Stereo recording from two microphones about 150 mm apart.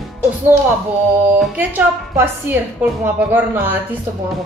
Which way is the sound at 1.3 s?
10° right (ahead or behind).